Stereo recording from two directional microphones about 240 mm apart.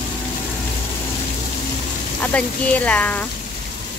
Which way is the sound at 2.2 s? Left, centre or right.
Centre.